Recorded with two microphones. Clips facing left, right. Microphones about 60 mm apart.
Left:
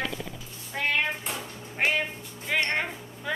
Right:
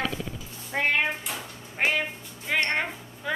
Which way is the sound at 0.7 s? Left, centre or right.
Right.